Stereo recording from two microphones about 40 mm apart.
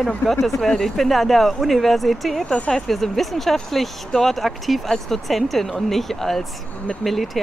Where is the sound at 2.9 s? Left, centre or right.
Centre.